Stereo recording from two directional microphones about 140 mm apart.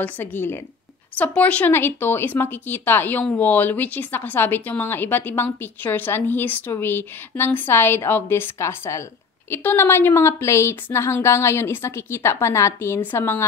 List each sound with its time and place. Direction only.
0.0 s speech: 15° left (ahead or behind)